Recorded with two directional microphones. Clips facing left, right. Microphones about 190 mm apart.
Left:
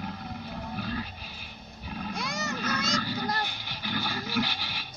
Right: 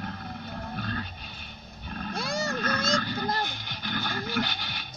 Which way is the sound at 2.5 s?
5° left (ahead or behind).